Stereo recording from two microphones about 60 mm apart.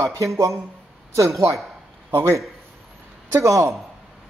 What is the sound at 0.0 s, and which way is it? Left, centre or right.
A man's voice, right.